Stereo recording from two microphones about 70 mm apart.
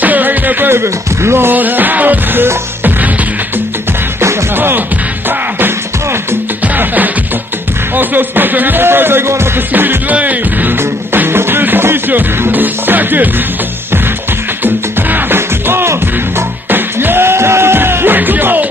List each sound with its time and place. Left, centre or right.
0.0 s music: right
4.2 s music: right
7.9 s music: right
14.6 s music: right